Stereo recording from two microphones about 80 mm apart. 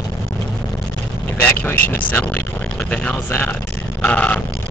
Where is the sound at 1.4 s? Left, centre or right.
Left.